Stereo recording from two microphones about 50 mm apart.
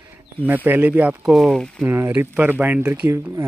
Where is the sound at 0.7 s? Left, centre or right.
Right.